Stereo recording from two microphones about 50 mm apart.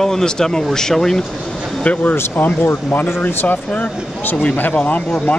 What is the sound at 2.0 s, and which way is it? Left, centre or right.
Speech, left.